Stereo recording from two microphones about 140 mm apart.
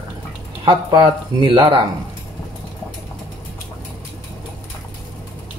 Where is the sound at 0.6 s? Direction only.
35° right (ahead or behind).